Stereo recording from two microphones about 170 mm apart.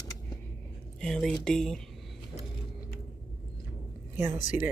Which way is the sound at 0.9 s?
5° left (ahead or behind).